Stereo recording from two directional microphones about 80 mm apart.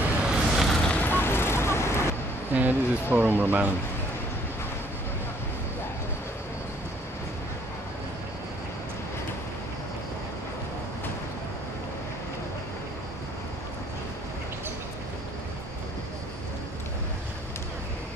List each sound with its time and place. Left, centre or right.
0.2 s vehicle: centre
0.8 s vehicle: left
2.5 s speech: right